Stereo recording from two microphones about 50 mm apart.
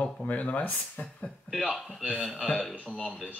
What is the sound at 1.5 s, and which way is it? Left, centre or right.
Speech, centre.